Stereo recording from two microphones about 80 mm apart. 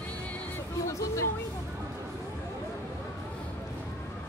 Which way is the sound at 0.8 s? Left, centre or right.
Left.